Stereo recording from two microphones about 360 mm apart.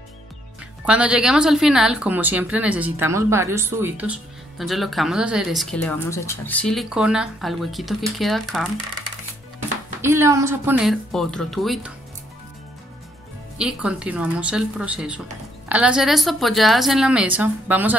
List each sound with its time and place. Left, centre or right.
0.8 s speech: centre
10.0 s speech: centre
13.6 s speech: centre